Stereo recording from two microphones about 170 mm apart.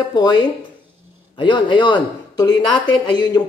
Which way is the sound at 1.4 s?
30° left (ahead or behind).